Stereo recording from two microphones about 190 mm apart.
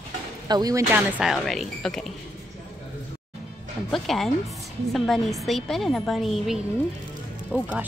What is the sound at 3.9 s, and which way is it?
Speech, centre (ahead or behind).